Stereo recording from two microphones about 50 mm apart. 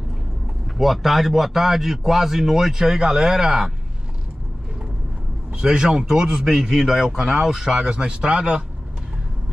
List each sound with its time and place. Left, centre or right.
0.7 s a man's voice: centre
5.6 s a man's voice: centre